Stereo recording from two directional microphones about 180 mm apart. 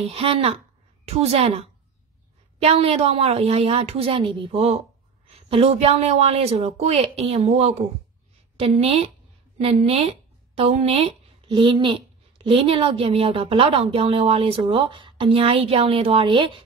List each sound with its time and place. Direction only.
0.0 s speech: 35° right (ahead or behind)